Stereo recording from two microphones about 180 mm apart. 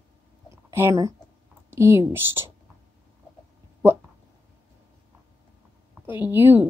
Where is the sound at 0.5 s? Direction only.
15° right (ahead or behind).